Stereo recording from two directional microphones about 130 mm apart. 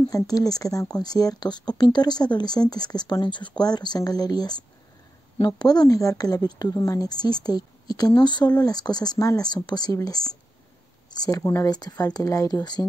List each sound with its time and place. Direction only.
0.1 s speech: 30° left (ahead or behind)